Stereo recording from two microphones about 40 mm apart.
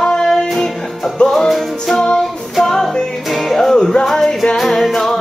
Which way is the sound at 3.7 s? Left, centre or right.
Centre.